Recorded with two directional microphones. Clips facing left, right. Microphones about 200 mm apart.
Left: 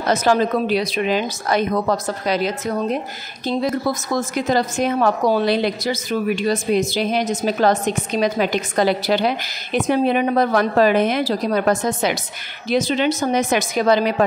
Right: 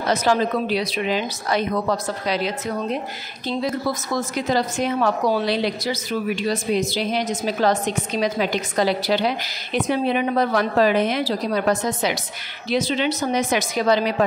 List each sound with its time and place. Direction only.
0.1 s a woman's voice: 50° left (ahead or behind)
4.5 s a woman's voice: 45° left (ahead or behind)